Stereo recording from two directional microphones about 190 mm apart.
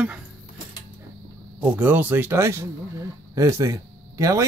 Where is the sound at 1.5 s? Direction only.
10° right (ahead or behind).